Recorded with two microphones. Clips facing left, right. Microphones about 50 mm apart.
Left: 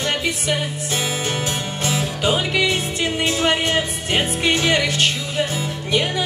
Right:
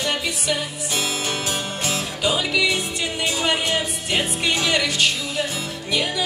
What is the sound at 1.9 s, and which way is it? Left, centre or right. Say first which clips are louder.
Music: left 3 dB; left.